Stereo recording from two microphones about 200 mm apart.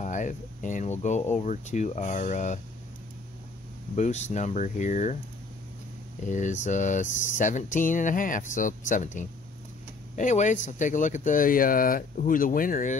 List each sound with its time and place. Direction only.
0.0 s speech: 40° left (ahead or behind)
3.9 s speech: 35° left (ahead or behind)
6.2 s speech: 35° left (ahead or behind)